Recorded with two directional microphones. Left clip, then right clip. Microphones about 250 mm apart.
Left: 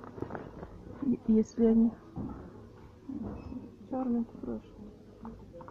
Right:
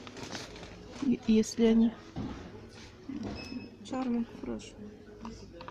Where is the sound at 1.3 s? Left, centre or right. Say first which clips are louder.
Even; centre.